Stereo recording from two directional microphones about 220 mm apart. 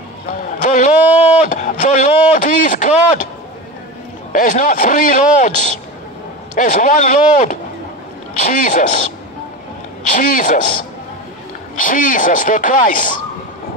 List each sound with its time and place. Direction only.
0.3 s music: 35° left (ahead or behind)
1.0 s a sound: 10° right (ahead or behind)
1.4 s a sound: 35° left (ahead or behind)
4.3 s speech: 40° left (ahead or behind)
10.1 s speech: 35° left (ahead or behind)
11.7 s speech: 35° left (ahead or behind)